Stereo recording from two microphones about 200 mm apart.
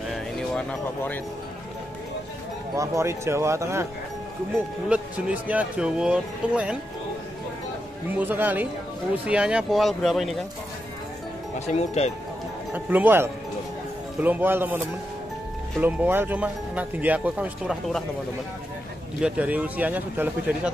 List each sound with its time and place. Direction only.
0.1 s horse: 5° left (ahead or behind)
2.8 s speech: 15° right (ahead or behind)
4.8 s speech: 5° right (ahead or behind)
8.1 s speech: 10° right (ahead or behind)
11.6 s speech: 30° left (ahead or behind)
12.7 s speech: 10° right (ahead or behind)
15.8 s speech: 10° right (ahead or behind)
19.2 s speech: 5° right (ahead or behind)